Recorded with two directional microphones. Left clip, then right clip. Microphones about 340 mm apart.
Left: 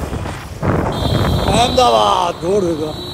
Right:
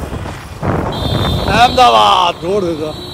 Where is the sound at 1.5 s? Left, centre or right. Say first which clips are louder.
Right 5 dB; centre.